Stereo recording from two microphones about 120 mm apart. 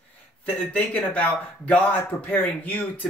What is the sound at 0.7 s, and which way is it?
Speech, 15° left (ahead or behind).